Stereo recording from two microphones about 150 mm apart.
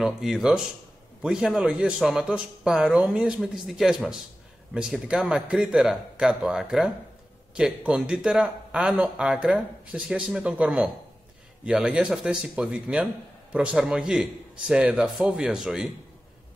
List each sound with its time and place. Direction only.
0.0 s a man's voice: centre (ahead or behind)